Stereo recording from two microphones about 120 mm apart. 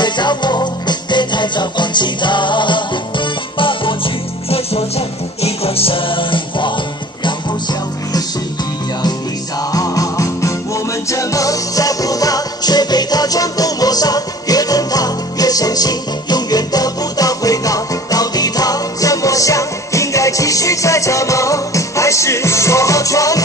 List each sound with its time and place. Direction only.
0.0 s music: 40° left (ahead or behind)
9.7 s music: 30° left (ahead or behind)